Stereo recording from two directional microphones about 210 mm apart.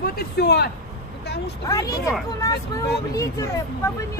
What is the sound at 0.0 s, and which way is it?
Speech, 50° left (ahead or behind).